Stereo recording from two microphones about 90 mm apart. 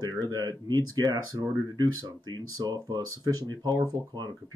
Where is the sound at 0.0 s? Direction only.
45° right (ahead or behind).